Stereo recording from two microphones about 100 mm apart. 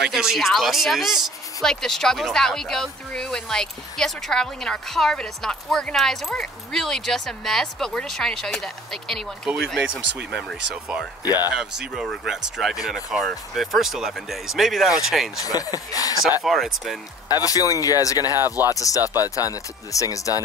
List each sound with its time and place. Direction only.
0.1 s speech: 5° right (ahead or behind)
15.3 s speech: 35° left (ahead or behind)
16.4 s speech: centre (ahead or behind)
17.3 s speech: 40° left (ahead or behind)
18.3 s speech: 25° right (ahead or behind)
18.7 s speech: 35° left (ahead or behind)